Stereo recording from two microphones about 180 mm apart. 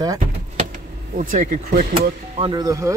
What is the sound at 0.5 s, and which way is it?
Speech, 45° right (ahead or behind).